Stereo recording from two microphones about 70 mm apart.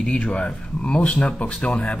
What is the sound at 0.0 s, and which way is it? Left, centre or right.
Speech, centre.